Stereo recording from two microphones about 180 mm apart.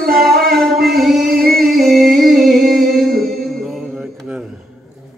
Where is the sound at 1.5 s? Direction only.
Centre (ahead or behind).